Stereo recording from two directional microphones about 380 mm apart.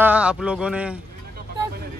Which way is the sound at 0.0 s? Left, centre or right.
Centre.